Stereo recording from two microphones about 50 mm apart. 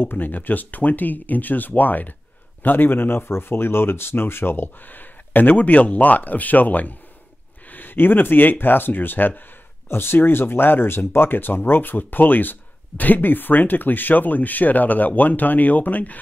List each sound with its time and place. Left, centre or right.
0.0 s speech: left